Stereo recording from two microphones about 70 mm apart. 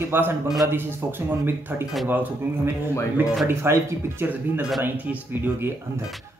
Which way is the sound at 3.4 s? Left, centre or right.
Right.